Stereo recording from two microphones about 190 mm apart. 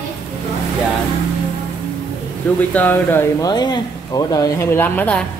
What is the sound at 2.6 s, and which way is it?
Speech, 10° left (ahead or behind).